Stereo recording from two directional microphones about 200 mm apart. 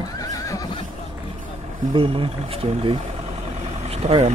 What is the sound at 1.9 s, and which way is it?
Vehicle, 25° right (ahead or behind).